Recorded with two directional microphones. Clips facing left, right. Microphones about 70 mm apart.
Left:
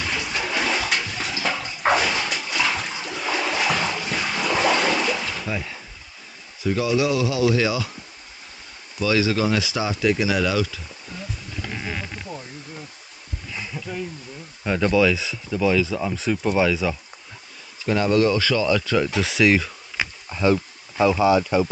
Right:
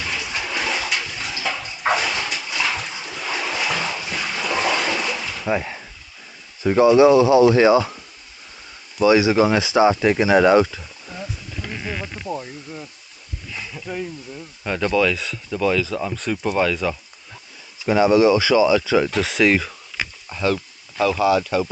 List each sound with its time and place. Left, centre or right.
0.4 s bathtub: centre
2.1 s dog: centre
3.3 s splash: centre
5.5 s speech: right
9.0 s speech: right
12.3 s speech: centre
13.6 s a sound: centre
14.6 s speech: centre
17.8 s speech: centre
20.4 s speech: centre